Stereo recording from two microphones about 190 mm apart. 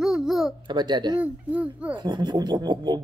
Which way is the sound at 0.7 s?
25° right (ahead or behind).